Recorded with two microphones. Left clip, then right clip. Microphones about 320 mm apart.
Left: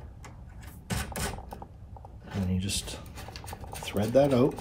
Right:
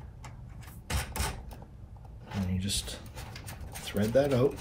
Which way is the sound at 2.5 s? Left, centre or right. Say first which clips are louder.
Even; centre.